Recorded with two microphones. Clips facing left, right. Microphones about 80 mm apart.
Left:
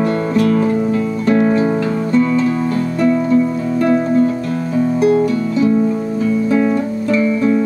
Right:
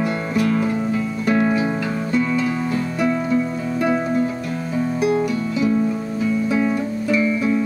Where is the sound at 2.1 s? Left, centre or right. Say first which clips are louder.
Left 6 dB; centre.